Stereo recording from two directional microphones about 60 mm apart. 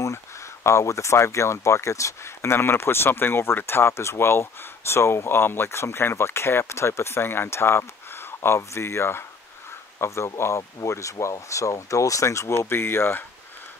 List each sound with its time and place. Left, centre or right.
0.7 s speech: left